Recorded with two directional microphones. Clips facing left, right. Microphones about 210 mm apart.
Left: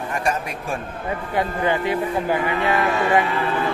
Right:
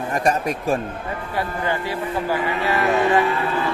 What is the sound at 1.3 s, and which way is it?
Speech, 20° left (ahead or behind).